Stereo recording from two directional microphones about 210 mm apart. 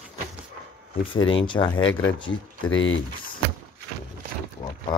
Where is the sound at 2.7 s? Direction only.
65° left (ahead or behind).